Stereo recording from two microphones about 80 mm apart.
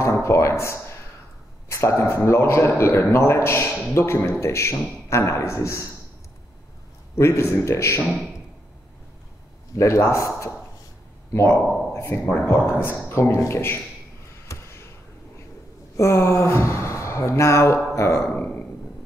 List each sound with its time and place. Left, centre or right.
0.0 s a man's voice: left
7.2 s a man's voice: left
9.8 s a man's voice: left
12.0 s a man's voice: left
14.5 s a sound: left
16.0 s a man's voice: left
18.3 s a sound: centre